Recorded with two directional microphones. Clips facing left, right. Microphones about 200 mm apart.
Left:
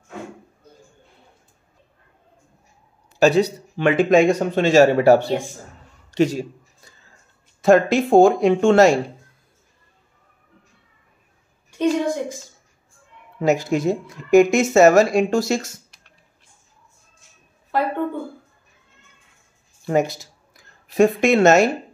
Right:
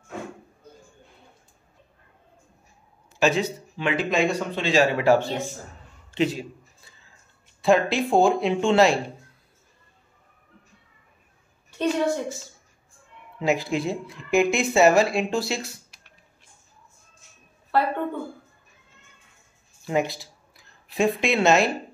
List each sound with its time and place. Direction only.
3.2 s speech: 40° left (ahead or behind)
3.7 s speech: 50° left (ahead or behind)
6.1 s a sound: 45° left (ahead or behind)
7.6 s speech: 45° left (ahead or behind)
11.8 s a woman's voice: 15° left (ahead or behind)
13.4 s speech: 45° left (ahead or behind)
19.9 s speech: 45° left (ahead or behind)